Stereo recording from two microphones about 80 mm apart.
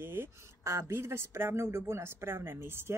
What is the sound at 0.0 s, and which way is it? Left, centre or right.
Speech, right.